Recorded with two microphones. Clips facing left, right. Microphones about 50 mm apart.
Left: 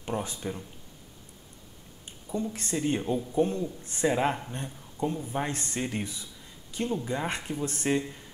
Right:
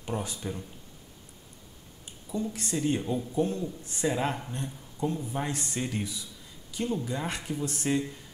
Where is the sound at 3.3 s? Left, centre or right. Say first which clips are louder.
Left 3 dB; left.